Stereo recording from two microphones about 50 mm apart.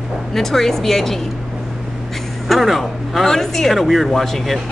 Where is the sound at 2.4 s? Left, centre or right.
Centre.